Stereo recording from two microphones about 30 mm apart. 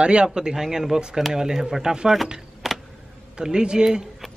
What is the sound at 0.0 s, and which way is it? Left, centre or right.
Speech, right.